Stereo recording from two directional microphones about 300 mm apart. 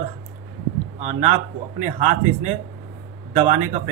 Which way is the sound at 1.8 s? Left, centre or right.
Right.